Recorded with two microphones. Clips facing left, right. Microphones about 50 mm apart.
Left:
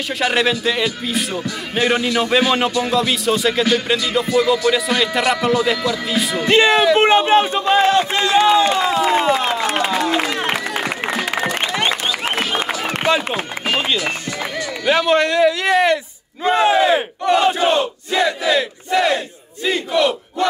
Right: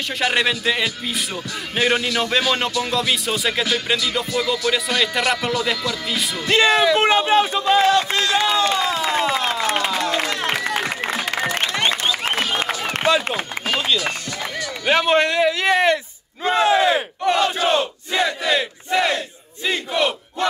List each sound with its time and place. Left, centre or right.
0.2 s music: centre
6.3 s speech: left
8.0 s a sound: centre
10.8 s applause: left
13.0 s run: left
14.9 s a man's voice: right
16.4 s battle cry: left
18.2 s battle cry: centre
18.6 s crowd: centre